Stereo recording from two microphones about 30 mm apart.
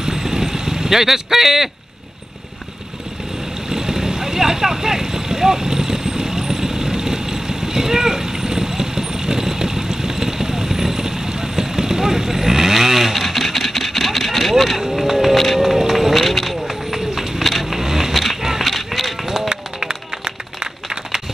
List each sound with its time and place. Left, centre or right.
0.0 s vehicle: centre
3.7 s vehicle: centre
14.8 s a sound: centre
15.6 s run: centre
16.2 s vehicle: centre
16.9 s run: centre
17.4 s vehicle: centre
17.7 s a sound: centre
18.1 s roaring cats: centre
18.6 s run: centre
19.9 s run: right